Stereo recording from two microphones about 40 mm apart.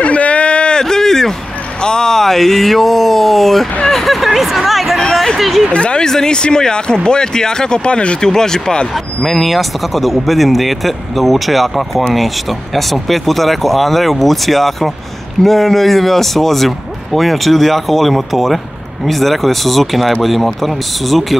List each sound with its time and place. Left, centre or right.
0.0 s a sound: left
0.8 s a sound: centre
1.8 s speech: centre
3.9 s a sound: centre
5.4 s speech: centre
5.7 s speech: left
6.0 s speech: centre
8.2 s speech: centre
8.9 s speech: centre